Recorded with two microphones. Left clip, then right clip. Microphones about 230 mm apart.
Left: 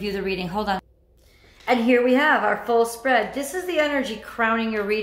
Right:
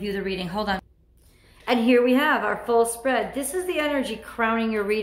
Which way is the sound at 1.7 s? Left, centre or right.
Centre.